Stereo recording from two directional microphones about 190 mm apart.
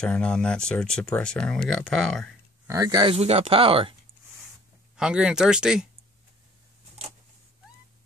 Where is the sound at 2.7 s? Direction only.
20° right (ahead or behind).